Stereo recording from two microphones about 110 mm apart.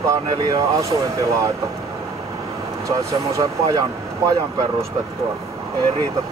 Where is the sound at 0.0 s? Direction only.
30° right (ahead or behind).